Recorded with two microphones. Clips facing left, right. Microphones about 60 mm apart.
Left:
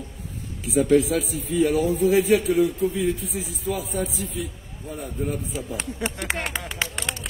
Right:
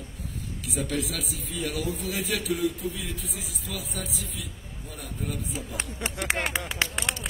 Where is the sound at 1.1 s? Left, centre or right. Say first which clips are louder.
Left 10 dB; left.